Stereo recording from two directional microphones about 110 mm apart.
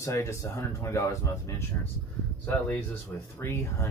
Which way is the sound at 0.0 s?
25° left (ahead or behind).